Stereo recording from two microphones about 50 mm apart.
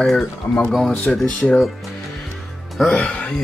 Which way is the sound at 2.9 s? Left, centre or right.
Centre.